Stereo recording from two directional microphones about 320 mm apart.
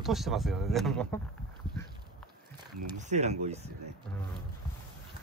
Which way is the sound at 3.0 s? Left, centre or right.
Right.